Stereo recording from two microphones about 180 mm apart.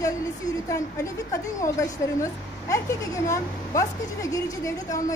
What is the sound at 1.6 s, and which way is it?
A woman's voice, 15° left (ahead or behind).